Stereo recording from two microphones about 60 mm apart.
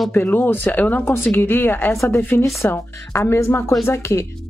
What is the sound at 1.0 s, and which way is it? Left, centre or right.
Speech, left.